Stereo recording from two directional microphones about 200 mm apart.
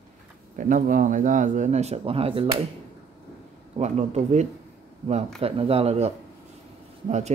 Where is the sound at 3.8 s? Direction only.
35° right (ahead or behind).